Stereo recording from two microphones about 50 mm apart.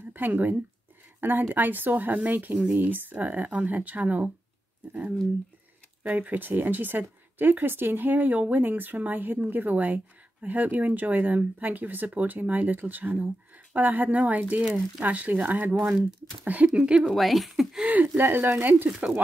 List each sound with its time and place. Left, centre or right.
0.1 s speech: right
6.0 s speech: right
17.0 s speech: centre
17.8 s speech: right
18.2 s speech: right
18.9 s speech: right